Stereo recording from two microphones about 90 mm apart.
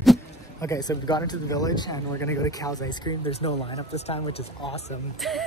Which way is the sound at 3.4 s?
70° left (ahead or behind).